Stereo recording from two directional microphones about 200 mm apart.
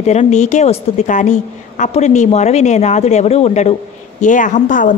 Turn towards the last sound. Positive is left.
turn(degrees=40)  # may be behind; listen again after turning